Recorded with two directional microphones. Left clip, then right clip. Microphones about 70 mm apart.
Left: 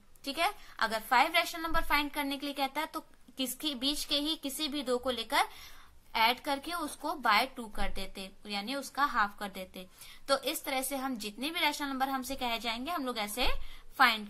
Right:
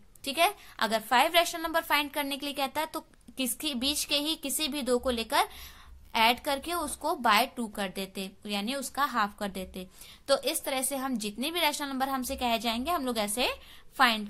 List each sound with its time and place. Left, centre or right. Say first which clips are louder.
0.2 s a woman's voice: right 5 dB; right
13.2 s a woman's voice: right 4 dB; right